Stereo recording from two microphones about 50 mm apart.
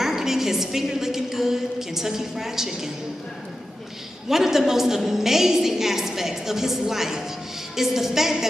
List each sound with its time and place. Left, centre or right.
0.0 s a woman's voice: centre
4.3 s a woman's voice: centre